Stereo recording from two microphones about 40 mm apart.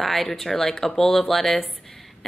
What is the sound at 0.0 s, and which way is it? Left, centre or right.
Speech, centre.